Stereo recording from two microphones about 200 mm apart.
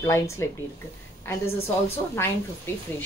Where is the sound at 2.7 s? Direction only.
10° left (ahead or behind).